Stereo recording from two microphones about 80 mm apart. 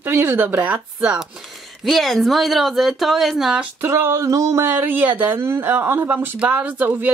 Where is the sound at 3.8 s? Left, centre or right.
Right.